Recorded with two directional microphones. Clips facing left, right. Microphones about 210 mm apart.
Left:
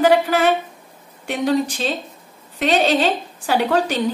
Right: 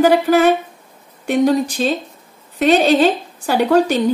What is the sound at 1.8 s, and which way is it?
A woman's voice, 45° right (ahead or behind).